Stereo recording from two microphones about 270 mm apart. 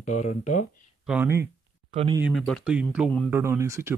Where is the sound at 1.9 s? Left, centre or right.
Centre.